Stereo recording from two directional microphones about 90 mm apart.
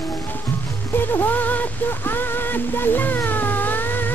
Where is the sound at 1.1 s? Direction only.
20° left (ahead or behind).